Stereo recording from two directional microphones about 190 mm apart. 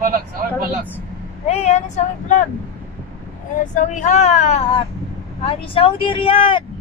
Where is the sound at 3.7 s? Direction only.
40° left (ahead or behind).